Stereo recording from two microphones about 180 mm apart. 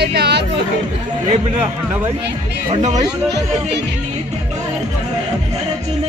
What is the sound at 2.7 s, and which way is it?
Speech, 40° right (ahead or behind).